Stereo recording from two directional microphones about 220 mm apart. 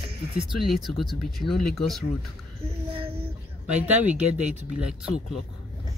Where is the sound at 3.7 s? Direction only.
5° right (ahead or behind).